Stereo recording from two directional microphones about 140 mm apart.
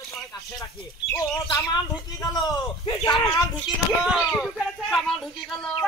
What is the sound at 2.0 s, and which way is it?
A man's voice, 25° left (ahead or behind).